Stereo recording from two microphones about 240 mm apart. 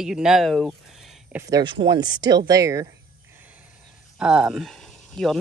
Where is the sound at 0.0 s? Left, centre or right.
Centre.